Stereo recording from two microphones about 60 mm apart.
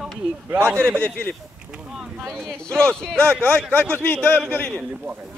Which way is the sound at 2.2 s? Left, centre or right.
Centre.